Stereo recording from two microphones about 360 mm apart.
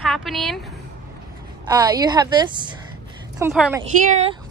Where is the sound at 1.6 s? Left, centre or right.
Centre.